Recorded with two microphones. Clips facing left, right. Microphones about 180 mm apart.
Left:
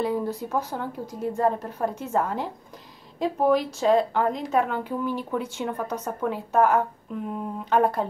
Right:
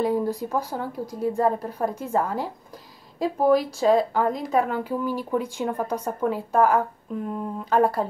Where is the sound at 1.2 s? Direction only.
10° right (ahead or behind).